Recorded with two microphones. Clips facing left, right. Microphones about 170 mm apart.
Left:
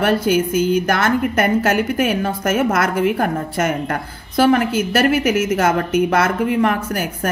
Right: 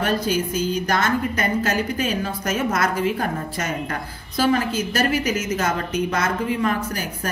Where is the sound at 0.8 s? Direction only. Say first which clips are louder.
Left 4 dB; 60° left (ahead or behind).